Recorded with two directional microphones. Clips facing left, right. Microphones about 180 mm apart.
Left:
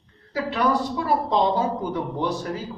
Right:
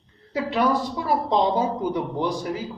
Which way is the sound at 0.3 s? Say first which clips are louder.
Right 1 dB; 15° right (ahead or behind).